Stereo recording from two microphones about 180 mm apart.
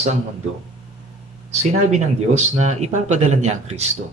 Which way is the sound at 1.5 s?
40° right (ahead or behind).